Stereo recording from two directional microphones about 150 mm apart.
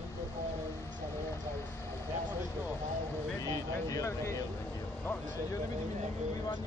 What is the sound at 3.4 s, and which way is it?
Speech, 25° left (ahead or behind).